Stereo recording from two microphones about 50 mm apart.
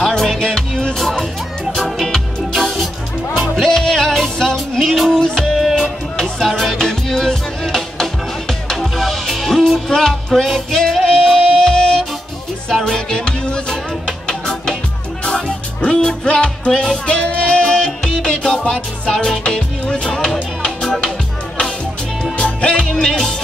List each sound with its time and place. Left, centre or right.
0.0 s music: centre
1.8 s music: centre
3.7 s music: centre
16.7 s music: centre
17.0 s music: left; by 21.0 s centre
22.4 s music: centre